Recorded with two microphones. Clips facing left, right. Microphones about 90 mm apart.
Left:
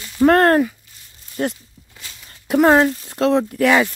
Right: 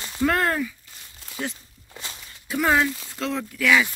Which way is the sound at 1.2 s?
80° right.